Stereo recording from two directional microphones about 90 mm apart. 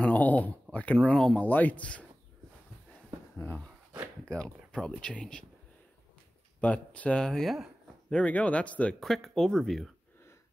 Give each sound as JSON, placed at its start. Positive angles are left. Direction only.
{"t": 0.0, "sound": "a sound", "side_deg": 15}
{"t": 1.0, "sound": "speech", "side_deg": 10}
{"t": 3.3, "sound": "speech", "side_deg": 20}
{"t": 4.3, "sound": "speech", "side_deg": 10}
{"t": 6.6, "sound": "speech", "side_deg": 15}
{"t": 8.1, "sound": "speech", "side_deg": 15}
{"t": 9.0, "sound": "speech", "side_deg": 0}